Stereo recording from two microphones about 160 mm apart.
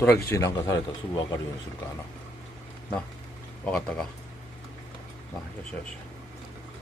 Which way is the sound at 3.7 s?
5° left (ahead or behind).